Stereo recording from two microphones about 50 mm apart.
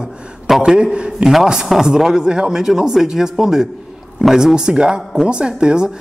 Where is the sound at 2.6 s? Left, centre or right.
Centre.